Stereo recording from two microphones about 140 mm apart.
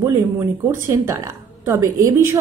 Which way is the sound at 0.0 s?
20° right (ahead or behind).